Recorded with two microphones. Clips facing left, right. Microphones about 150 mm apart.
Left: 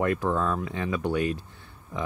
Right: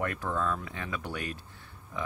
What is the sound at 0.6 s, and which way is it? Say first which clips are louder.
Speech: left 9 dB; 25° left (ahead or behind).